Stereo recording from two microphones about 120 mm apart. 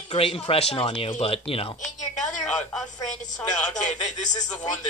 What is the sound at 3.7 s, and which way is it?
Speech, 90° left.